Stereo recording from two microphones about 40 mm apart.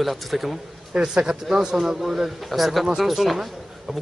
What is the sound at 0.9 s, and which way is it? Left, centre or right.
Speech, right.